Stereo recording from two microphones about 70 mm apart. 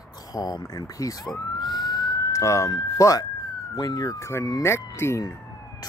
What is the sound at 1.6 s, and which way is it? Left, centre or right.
Emergency vehicle, left.